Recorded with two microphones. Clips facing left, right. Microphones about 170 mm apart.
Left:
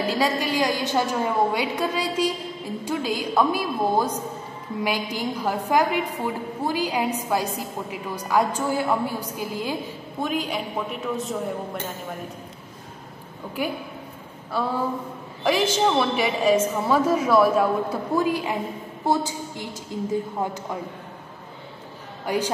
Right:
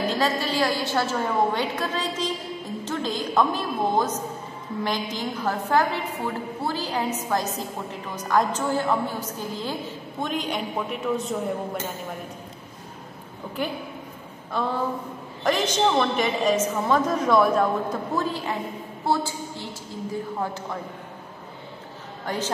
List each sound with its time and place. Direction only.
0.1 s a woman's voice: 10° left (ahead or behind)
13.6 s a woman's voice: 10° left (ahead or behind)
22.2 s a man's voice: 10° left (ahead or behind)